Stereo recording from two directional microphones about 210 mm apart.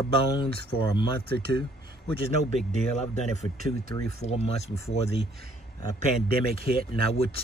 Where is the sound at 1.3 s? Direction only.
50° right (ahead or behind).